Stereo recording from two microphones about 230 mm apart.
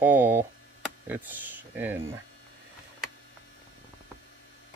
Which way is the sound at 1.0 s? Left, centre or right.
Centre.